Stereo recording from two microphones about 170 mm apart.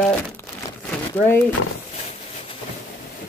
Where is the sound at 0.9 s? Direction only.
10° left (ahead or behind).